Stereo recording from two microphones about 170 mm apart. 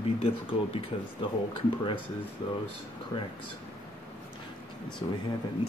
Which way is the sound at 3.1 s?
30° left (ahead or behind).